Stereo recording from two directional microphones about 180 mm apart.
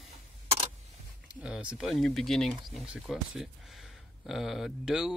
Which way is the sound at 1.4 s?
5° right (ahead or behind).